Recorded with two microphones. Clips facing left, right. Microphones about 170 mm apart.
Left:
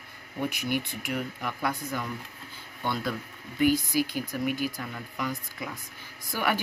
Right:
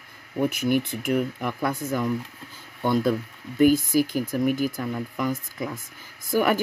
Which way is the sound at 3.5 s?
45° right (ahead or behind).